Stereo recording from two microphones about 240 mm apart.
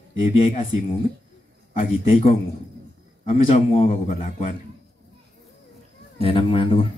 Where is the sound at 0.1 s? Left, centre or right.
Left.